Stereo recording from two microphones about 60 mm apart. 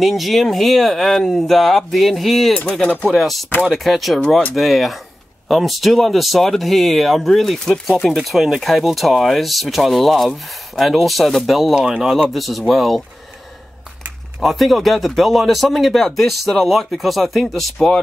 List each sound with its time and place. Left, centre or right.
0.0 s speech: centre
14.4 s speech: centre